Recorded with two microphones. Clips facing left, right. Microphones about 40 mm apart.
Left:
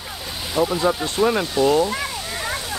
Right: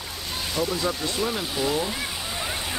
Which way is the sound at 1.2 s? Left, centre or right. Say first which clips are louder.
Left 10 dB; centre.